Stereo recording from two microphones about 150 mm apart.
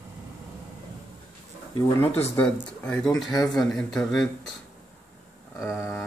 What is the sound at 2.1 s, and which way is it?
Speech, 15° left (ahead or behind).